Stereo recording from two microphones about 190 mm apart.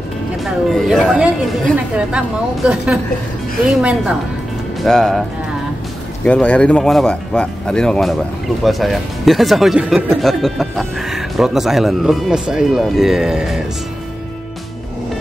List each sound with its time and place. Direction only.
0.5 s speech: centre (ahead or behind)
6.2 s speech: 5° left (ahead or behind)